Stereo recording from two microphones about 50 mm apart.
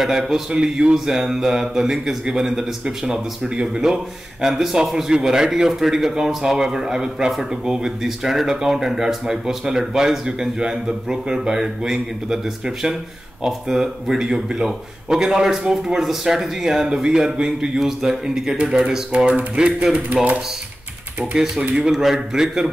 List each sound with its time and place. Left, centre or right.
0.0 s a man's voice: centre
21.4 s speech: centre